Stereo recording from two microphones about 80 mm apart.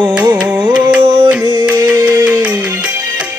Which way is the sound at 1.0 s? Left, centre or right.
Right.